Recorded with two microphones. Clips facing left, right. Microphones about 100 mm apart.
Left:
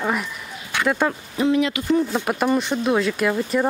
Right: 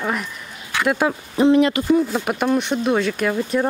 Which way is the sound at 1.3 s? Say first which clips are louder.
Right 5 dB; 30° right (ahead or behind).